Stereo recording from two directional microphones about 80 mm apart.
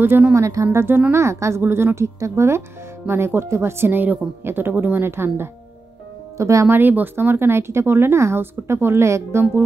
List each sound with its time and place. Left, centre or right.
0.0 s speech: right
0.7 s speech: right
6.7 s speech: right